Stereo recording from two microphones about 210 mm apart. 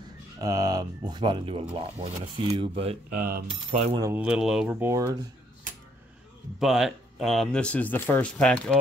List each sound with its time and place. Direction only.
0.4 s speech: 15° right (ahead or behind); by 3.4 s 40° right (ahead or behind)
3.4 s speech: 25° right (ahead or behind)
4.0 s speech: 10° right (ahead or behind)
6.6 s speech: centre (ahead or behind)